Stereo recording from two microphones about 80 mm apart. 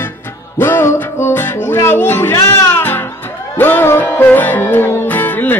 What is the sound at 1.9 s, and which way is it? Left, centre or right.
Speech, left.